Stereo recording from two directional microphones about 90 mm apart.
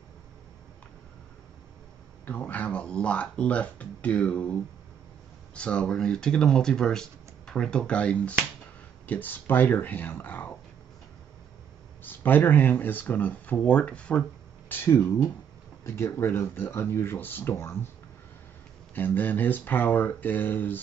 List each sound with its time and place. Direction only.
2.2 s speech: 20° left (ahead or behind)
12.0 s speech: 20° left (ahead or behind)
14.7 s speech: 25° left (ahead or behind)
18.9 s speech: 20° left (ahead or behind)